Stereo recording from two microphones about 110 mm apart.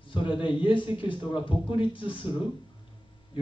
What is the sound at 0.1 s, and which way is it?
A man's voice, 50° left (ahead or behind).